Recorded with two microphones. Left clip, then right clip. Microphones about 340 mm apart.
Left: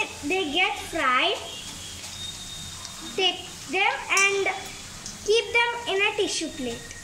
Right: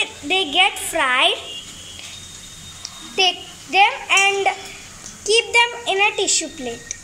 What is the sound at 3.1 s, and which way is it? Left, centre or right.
Speech, centre.